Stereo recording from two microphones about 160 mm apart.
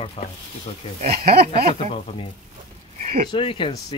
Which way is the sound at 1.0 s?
75° right (ahead or behind).